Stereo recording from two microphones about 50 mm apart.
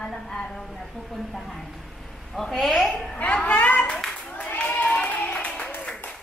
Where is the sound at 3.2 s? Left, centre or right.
Left.